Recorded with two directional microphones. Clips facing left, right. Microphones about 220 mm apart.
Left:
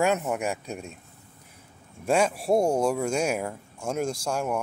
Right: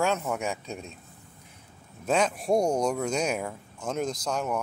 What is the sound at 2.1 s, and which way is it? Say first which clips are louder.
Speech: left 2 dB; 10° left (ahead or behind).